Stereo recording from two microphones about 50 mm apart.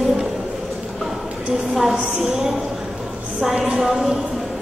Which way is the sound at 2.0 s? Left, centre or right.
Centre.